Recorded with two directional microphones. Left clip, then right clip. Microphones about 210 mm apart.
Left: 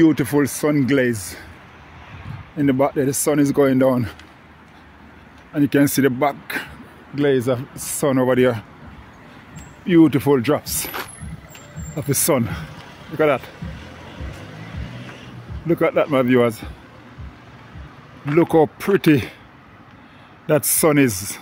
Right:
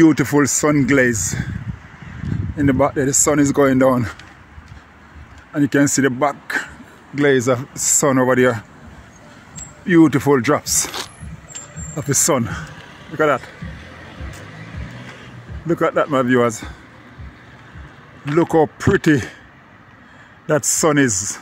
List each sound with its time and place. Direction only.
0.0 s speech: 20° right (ahead or behind)
2.5 s speech: 10° right (ahead or behind)
5.5 s speech: 5° right (ahead or behind)
7.2 s speech: 15° right (ahead or behind)
9.8 s speech: 10° right (ahead or behind)
11.9 s speech: 5° right (ahead or behind)
15.6 s speech: centre (ahead or behind)
18.2 s speech: centre (ahead or behind)
20.4 s speech: centre (ahead or behind)